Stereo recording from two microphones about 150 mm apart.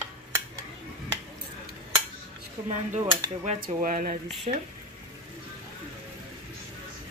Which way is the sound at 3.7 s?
65° right (ahead or behind).